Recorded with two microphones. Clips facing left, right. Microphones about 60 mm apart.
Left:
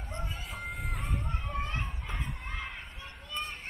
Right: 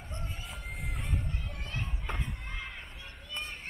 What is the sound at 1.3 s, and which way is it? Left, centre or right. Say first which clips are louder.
Children playing: left 5 dB; left.